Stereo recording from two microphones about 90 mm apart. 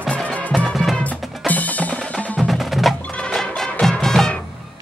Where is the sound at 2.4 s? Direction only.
Centre (ahead or behind).